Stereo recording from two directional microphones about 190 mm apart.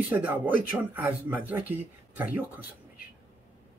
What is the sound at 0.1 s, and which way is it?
Speech, 10° right (ahead or behind).